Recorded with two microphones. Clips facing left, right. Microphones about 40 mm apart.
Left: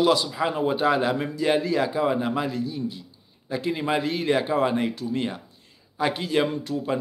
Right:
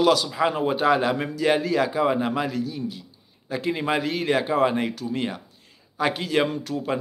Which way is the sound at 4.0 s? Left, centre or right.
Right.